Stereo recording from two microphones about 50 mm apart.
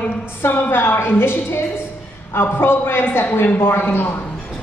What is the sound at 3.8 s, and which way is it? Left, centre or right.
Speech, left.